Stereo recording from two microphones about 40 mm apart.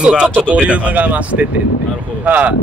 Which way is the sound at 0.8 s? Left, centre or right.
Right.